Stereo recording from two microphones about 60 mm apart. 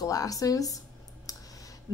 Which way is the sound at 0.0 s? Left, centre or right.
Left.